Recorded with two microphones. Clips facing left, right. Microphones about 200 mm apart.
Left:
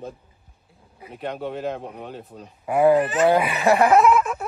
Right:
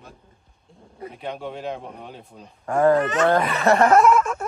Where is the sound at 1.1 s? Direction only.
Centre (ahead or behind).